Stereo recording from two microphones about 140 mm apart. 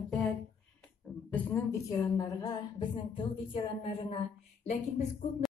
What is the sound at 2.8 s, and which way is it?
A woman's voice, 35° left (ahead or behind).